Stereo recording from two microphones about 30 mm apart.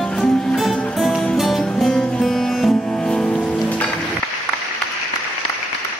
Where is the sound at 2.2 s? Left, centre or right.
Centre.